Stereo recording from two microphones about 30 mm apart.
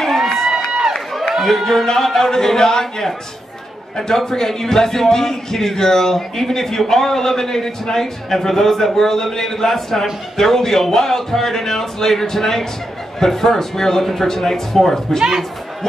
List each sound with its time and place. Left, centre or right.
0.0 s run: centre
1.4 s speech: centre
4.3 s speech: centre
15.1 s speech: centre